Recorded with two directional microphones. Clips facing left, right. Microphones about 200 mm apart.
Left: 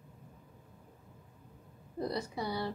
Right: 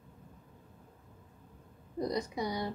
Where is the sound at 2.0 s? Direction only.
15° right (ahead or behind).